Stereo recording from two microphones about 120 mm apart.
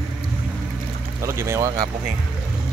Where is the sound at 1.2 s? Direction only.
25° right (ahead or behind).